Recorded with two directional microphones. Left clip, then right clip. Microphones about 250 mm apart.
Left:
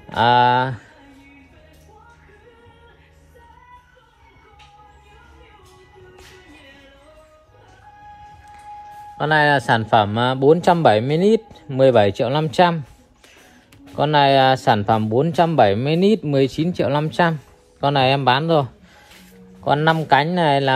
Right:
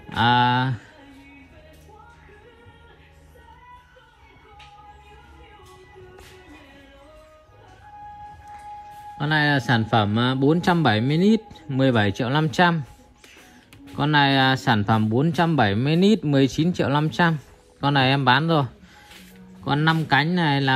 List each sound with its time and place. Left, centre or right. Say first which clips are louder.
0.1 s speech: left 4 dB; centre
9.2 s speech: left 6 dB; centre
13.9 s speech: left 5 dB; centre